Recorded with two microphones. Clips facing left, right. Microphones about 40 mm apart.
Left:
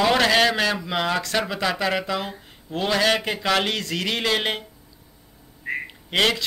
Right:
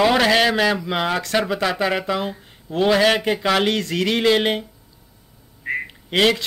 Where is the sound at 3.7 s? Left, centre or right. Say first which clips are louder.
Right 5 dB; right; by 4.6 s centre.